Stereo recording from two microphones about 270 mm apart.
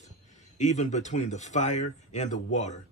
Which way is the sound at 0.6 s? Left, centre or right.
Left.